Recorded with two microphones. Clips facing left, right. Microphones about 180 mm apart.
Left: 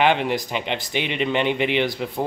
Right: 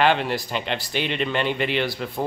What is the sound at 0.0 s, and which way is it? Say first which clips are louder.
Speech: left 1 dB; 15° left (ahead or behind).